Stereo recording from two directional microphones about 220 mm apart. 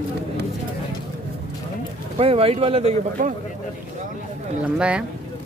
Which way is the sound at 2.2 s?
25° right (ahead or behind).